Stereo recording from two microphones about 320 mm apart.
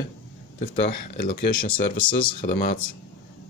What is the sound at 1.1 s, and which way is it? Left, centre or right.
Speech, left.